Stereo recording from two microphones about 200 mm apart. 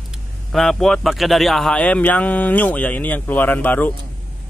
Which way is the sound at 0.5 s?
Centre (ahead or behind).